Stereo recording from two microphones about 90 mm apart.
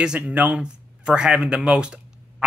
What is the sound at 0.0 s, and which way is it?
Speech, 10° right (ahead or behind).